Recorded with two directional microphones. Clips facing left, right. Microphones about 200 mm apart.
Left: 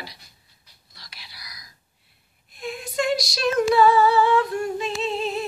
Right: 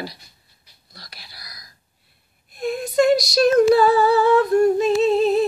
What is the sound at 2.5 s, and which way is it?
Humming, 40° right (ahead or behind).